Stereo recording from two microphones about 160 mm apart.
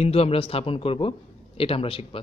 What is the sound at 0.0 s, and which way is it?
Speech, 40° left (ahead or behind).